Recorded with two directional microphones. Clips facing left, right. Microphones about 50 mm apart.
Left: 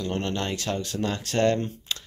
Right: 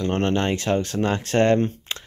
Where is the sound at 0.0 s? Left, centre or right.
Right.